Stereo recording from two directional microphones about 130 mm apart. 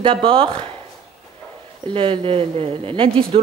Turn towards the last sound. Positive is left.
turn(degrees=-45)  # may be behind; listen again after turning